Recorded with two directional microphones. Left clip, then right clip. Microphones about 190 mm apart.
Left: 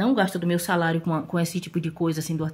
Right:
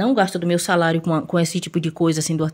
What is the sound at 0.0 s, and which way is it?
Speech, 40° right (ahead or behind).